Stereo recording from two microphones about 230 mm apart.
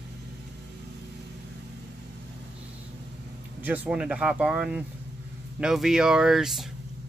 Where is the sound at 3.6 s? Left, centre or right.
Centre.